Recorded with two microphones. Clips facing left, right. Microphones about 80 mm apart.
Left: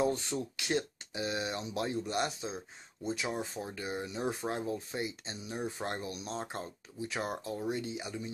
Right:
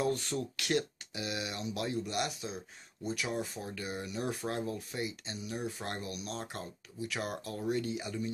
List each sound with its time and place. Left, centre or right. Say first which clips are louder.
0.0 s speech: left 1 dB; left